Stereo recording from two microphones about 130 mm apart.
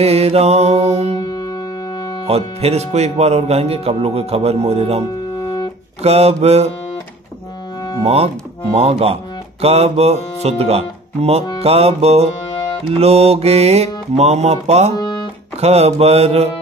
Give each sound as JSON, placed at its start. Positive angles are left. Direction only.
{"t": 0.0, "sound": "mantra", "side_deg": -50}
{"t": 1.1, "sound": "music", "side_deg": 30}
{"t": 2.2, "sound": "speech", "side_deg": -50}
{"t": 6.0, "sound": "speech", "side_deg": -55}
{"t": 8.0, "sound": "speech", "side_deg": -50}